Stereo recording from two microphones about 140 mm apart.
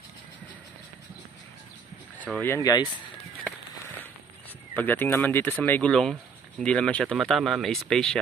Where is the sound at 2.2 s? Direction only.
10° left (ahead or behind).